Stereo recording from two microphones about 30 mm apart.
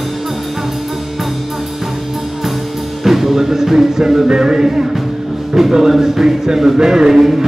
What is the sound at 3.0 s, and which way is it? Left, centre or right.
Music, centre.